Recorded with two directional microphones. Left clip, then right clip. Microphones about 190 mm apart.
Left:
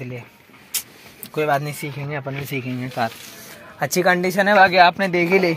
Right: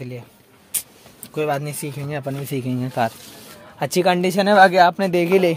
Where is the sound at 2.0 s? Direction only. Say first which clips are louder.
Right 2 dB; 45° right (ahead or behind).